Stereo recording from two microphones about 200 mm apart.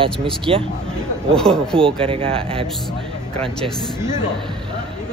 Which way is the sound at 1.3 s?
5° left (ahead or behind).